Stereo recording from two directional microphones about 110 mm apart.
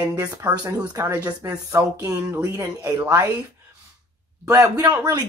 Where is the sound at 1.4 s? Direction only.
30° right (ahead or behind).